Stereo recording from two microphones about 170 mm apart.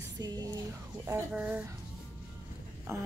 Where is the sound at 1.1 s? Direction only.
10° right (ahead or behind).